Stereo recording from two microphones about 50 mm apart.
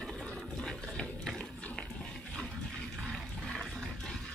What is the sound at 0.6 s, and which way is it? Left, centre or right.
Sewing machine, centre.